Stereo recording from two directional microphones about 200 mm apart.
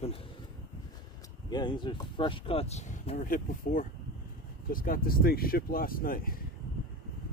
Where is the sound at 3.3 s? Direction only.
45° left (ahead or behind).